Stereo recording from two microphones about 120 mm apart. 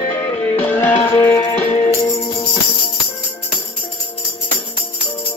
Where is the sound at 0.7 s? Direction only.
15° left (ahead or behind).